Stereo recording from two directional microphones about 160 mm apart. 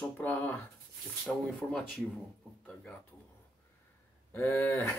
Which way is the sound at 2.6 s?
10° left (ahead or behind).